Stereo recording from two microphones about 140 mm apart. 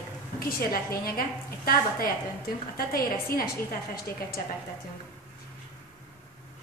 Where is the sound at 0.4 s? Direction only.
90° left.